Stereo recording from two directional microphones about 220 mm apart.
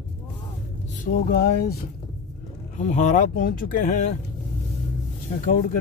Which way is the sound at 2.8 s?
30° left (ahead or behind).